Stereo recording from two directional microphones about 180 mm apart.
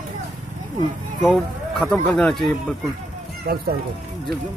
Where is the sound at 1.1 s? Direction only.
Centre (ahead or behind).